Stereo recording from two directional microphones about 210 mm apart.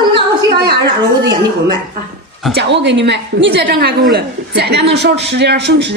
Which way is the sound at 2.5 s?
55° right (ahead or behind).